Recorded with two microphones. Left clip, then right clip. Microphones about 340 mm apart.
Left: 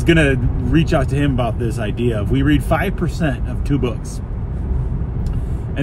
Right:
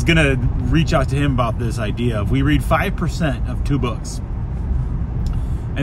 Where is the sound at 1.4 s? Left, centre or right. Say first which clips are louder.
Even; right.